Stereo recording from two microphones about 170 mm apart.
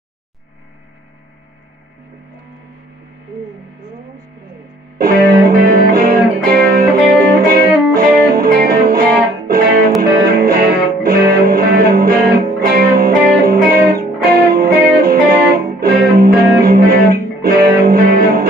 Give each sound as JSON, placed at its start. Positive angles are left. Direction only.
{"t": 4.9, "sound": "music", "side_deg": -65}